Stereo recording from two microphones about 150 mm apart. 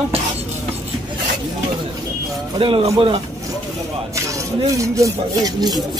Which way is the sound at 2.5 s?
35° right (ahead or behind).